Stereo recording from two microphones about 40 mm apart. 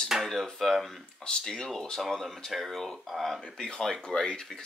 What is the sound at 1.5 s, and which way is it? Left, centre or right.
Speech, centre.